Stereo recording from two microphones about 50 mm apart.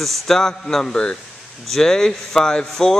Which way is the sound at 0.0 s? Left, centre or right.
Centre.